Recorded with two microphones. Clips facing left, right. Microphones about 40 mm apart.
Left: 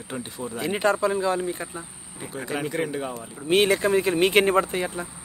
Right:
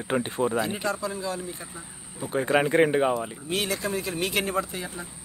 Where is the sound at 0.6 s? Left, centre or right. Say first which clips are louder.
Left 6 dB; left.